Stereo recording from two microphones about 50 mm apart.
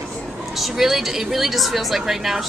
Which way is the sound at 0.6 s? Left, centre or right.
Centre.